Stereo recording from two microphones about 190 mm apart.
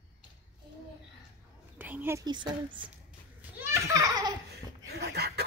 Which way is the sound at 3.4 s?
15° right (ahead or behind).